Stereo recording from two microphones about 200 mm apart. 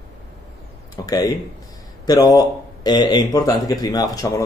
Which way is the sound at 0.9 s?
20° left (ahead or behind).